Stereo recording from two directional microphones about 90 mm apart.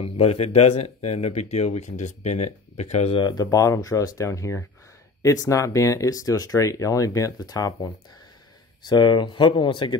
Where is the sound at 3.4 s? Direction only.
35° left (ahead or behind).